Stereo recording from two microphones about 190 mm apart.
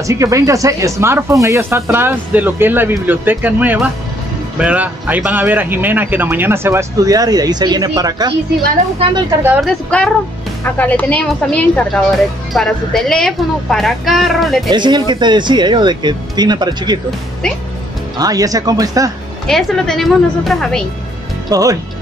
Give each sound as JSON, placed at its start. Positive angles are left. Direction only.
{"t": 0.0, "sound": "speech", "side_deg": -15}
{"t": 9.4, "sound": "speech", "side_deg": -10}
{"t": 9.8, "sound": "speech", "side_deg": 5}
{"t": 14.7, "sound": "speech", "side_deg": -20}
{"t": 18.1, "sound": "speech", "side_deg": -20}
{"t": 19.4, "sound": "speech", "side_deg": 0}
{"t": 21.5, "sound": "speech", "side_deg": -15}